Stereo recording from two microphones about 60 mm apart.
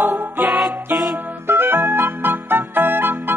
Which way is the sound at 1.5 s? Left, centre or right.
Right.